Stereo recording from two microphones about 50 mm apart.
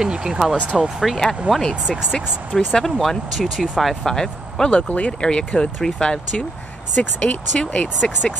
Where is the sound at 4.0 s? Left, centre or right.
Centre.